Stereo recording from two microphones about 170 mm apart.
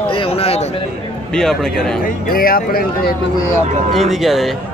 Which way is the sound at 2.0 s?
60° left (ahead or behind).